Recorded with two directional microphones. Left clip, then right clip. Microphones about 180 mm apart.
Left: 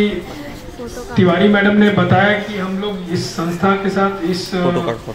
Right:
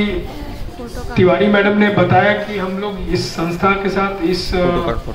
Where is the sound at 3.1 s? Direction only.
15° right (ahead or behind).